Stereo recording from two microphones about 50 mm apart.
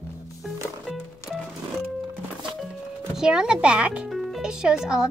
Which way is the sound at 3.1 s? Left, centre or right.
Centre.